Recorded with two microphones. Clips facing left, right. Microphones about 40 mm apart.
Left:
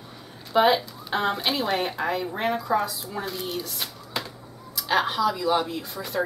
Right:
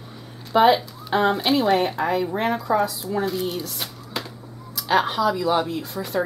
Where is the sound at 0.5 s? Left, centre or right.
Centre.